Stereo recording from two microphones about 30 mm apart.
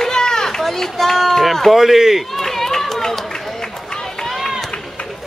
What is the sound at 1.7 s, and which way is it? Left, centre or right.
Speech, centre.